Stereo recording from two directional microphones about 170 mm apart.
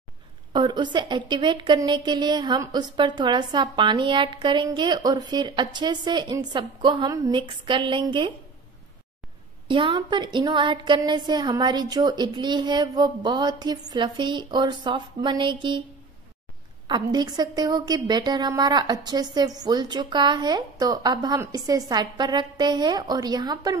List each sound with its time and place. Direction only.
0.5 s a woman's voice: 25° right (ahead or behind)
9.7 s a woman's voice: 30° right (ahead or behind)
16.8 s a woman's voice: 25° right (ahead or behind)